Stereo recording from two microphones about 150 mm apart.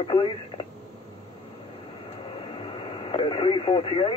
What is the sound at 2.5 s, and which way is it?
Radio, 40° left (ahead or behind).